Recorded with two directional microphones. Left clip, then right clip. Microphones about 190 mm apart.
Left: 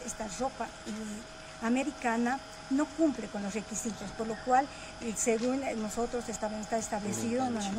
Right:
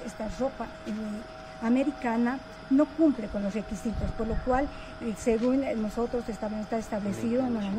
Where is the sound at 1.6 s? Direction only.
15° left (ahead or behind).